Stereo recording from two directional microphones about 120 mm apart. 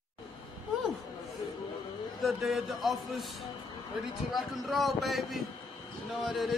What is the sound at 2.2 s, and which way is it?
A man's voice, centre (ahead or behind).